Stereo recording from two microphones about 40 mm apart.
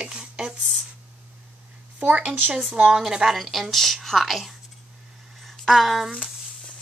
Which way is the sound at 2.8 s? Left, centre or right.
Centre.